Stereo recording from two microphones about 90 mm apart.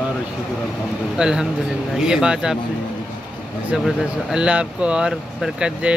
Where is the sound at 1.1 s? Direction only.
10° right (ahead or behind).